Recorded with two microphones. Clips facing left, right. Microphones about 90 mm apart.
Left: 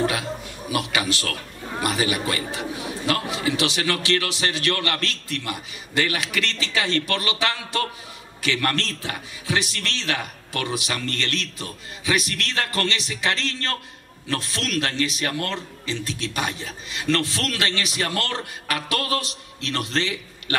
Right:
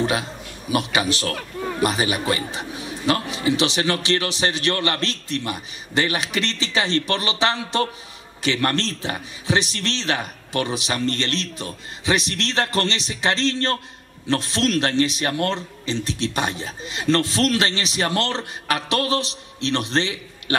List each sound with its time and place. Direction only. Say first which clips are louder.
0.0 s a man's voice: right 1 dB; 25° right (ahead or behind)